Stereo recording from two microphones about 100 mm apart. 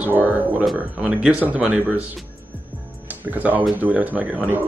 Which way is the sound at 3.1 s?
15° right (ahead or behind).